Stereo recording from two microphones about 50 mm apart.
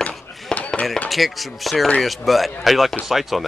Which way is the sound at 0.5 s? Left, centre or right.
Left.